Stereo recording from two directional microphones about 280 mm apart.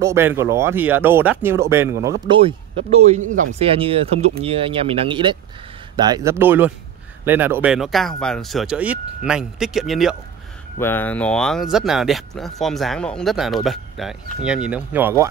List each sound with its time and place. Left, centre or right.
0.0 s speech: centre